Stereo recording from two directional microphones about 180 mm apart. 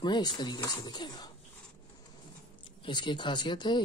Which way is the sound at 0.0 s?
25° left (ahead or behind).